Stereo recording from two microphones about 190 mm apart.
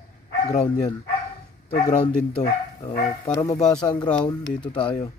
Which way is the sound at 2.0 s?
30° left (ahead or behind).